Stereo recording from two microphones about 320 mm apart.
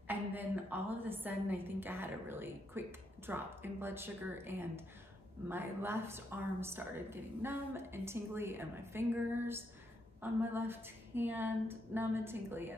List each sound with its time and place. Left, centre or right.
0.1 s a woman's voice: centre